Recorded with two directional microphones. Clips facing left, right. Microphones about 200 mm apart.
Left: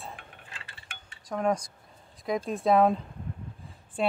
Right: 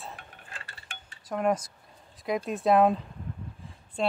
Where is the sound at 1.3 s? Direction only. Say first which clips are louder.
Right 1 dB; 5° right (ahead or behind).